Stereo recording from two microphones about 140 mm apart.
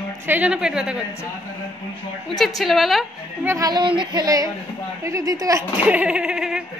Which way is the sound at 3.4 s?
25° right (ahead or behind).